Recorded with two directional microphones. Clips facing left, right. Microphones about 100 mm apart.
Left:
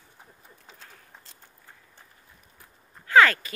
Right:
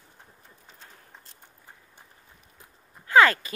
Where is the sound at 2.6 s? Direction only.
20° right (ahead or behind).